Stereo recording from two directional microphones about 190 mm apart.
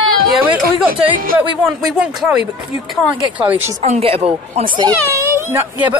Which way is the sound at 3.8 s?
35° right (ahead or behind).